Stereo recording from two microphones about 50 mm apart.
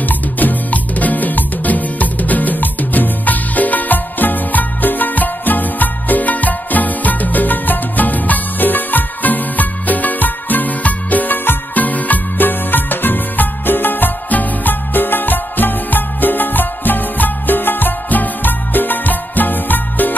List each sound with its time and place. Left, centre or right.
0.0 s music: left